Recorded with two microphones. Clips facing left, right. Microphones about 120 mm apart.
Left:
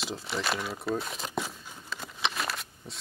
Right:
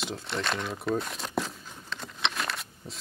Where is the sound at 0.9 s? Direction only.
Centre (ahead or behind).